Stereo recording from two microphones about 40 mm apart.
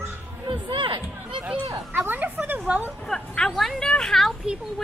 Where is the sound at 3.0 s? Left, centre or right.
Centre.